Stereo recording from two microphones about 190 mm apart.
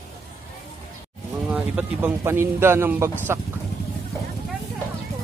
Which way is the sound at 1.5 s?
5° right (ahead or behind).